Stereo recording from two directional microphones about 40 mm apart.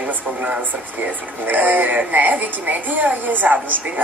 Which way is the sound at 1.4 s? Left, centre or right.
Right.